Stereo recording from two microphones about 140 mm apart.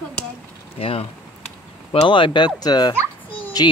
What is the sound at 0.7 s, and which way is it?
Speech, 40° left (ahead or behind).